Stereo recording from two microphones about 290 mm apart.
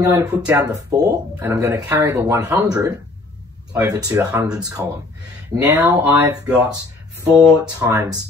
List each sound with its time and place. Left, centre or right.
0.0 s speech: centre